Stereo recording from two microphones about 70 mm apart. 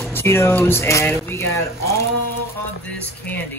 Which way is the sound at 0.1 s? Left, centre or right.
Left.